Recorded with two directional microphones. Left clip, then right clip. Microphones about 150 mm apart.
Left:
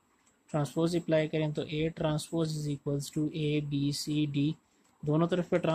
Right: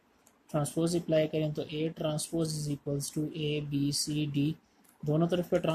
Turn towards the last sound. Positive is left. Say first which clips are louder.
# even
turn(degrees=55)  # may be behind; listen again after turning